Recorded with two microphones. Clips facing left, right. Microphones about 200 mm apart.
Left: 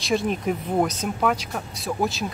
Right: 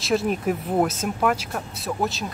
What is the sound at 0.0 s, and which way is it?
Speech, 5° right (ahead or behind).